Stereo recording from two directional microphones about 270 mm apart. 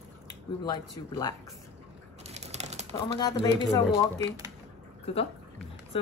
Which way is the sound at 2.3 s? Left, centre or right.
Right.